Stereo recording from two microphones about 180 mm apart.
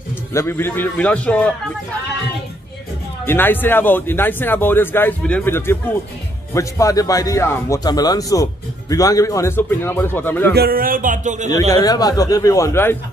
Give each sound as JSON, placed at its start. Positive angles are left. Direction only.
{"t": 0.3, "sound": "a man's voice", "side_deg": 15}
{"t": 3.3, "sound": "a man's voice", "side_deg": 10}
{"t": 10.5, "sound": "speech", "side_deg": -55}
{"t": 11.7, "sound": "a man's voice", "side_deg": 20}